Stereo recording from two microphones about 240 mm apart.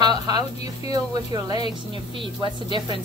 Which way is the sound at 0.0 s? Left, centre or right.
Centre.